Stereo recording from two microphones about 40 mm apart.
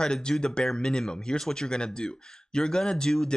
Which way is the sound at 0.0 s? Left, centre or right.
Left.